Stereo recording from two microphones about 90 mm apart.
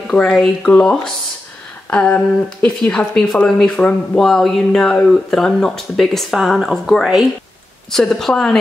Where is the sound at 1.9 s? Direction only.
15° left (ahead or behind).